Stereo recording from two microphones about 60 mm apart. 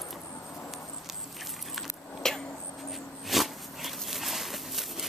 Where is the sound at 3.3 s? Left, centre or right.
Centre.